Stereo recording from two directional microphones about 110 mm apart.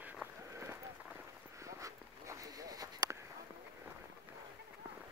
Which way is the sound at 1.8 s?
30° right (ahead or behind).